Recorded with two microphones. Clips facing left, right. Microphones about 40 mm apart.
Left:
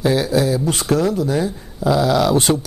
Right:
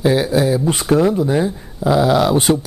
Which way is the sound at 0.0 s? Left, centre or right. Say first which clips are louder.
Right 2 dB; centre.